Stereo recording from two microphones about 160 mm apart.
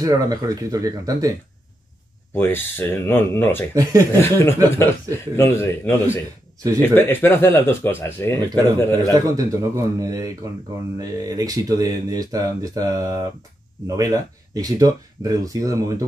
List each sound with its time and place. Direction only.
0.0 s speech: 20° right (ahead or behind)
2.3 s speech: 15° left (ahead or behind)
9.1 s speech: 20° right (ahead or behind)